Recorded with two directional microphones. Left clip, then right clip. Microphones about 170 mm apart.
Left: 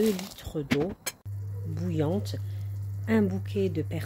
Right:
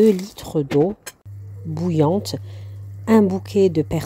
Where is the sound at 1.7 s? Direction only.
35° right (ahead or behind).